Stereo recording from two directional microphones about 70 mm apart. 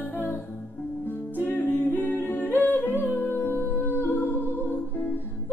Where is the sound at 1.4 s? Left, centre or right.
Left.